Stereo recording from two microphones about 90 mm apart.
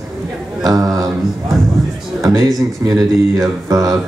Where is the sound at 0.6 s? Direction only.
40° right (ahead or behind).